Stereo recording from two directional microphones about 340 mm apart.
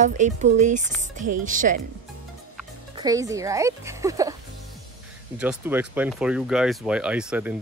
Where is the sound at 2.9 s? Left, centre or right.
Centre.